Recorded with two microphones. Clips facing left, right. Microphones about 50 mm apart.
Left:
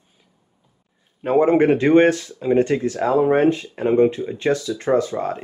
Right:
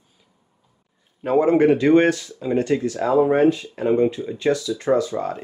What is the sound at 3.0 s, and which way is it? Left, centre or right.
Speech, left.